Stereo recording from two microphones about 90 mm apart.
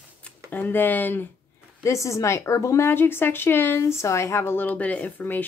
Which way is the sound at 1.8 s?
35° left (ahead or behind).